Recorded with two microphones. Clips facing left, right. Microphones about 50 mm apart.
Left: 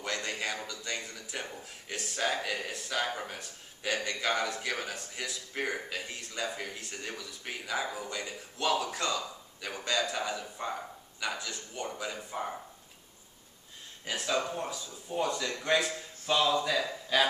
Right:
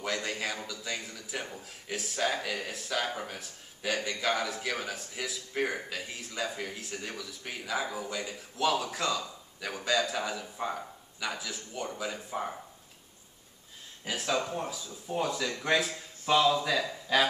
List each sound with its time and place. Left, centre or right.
0.0 s a sound: centre
0.7 s a man's voice: centre
14.0 s a man's voice: centre